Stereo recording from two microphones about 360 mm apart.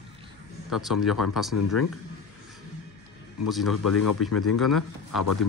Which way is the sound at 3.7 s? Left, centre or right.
Left.